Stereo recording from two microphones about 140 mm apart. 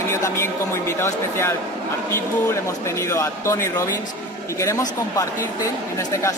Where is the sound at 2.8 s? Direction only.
20° left (ahead or behind).